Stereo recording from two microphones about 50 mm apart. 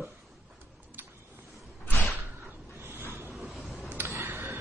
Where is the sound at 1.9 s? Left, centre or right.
Left.